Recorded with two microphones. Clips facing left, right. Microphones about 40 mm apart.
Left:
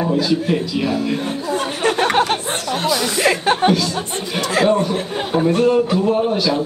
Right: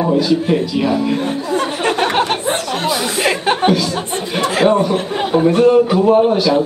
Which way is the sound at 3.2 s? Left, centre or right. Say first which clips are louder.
Even; right.